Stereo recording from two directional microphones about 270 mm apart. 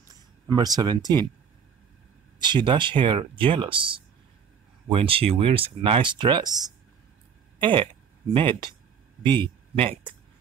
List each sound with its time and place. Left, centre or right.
0.6 s speech: centre
2.3 s speech: centre